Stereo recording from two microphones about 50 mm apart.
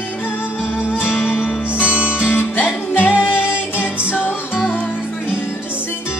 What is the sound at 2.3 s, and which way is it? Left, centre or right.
Music, left.